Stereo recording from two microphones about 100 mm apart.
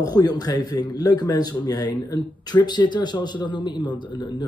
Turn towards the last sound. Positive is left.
turn(degrees=50)  # may be behind; listen again after turning